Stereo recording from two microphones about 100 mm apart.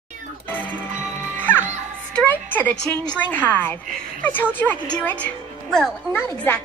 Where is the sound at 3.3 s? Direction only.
20° left (ahead or behind).